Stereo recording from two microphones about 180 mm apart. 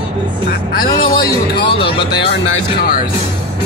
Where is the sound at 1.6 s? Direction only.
25° left (ahead or behind).